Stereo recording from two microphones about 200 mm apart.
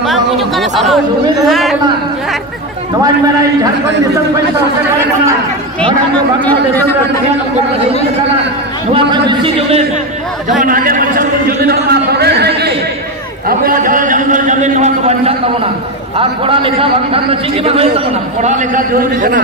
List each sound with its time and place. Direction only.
0.0 s a man's voice: centre (ahead or behind)
5.8 s a man's voice: 5° left (ahead or behind)
8.9 s a man's voice: 20° right (ahead or behind)
10.6 s a sound: 45° right (ahead or behind)
13.5 s a man's voice: 45° right (ahead or behind)